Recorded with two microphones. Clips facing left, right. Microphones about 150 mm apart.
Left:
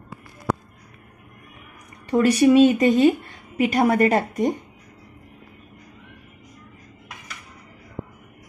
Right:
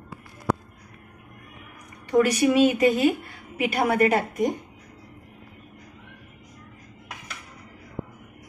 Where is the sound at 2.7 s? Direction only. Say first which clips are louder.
Left 4 dB; 35° left (ahead or behind).